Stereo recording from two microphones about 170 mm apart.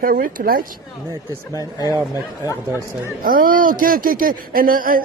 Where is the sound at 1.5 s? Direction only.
20° left (ahead or behind).